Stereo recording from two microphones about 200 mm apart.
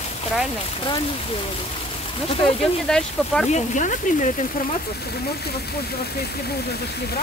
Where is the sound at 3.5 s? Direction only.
40° left (ahead or behind).